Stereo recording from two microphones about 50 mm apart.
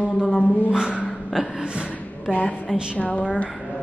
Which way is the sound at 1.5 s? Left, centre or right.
Centre.